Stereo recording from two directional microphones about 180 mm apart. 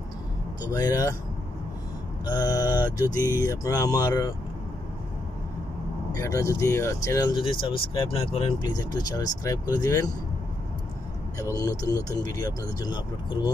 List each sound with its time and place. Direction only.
0.6 s speech: 20° left (ahead or behind)
2.2 s speech: 20° left (ahead or behind)
6.1 s speech: 20° left (ahead or behind)
7.7 s speech: 30° left (ahead or behind)
11.3 s speech: 20° left (ahead or behind)